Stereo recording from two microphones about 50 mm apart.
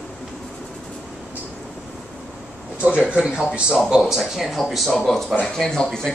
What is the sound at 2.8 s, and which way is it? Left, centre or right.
Speech, right.